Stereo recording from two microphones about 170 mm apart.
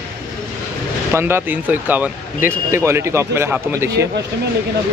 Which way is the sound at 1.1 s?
15° right (ahead or behind).